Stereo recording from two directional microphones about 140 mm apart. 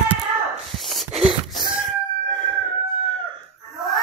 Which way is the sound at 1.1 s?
50° right (ahead or behind).